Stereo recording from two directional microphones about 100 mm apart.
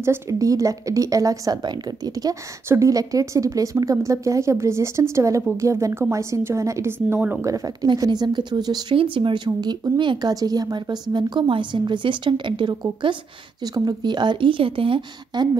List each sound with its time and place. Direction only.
0.0 s a woman's voice: 30° right (ahead or behind)
7.4 s speech: 35° right (ahead or behind)
8.9 s speech: 60° right (ahead or behind)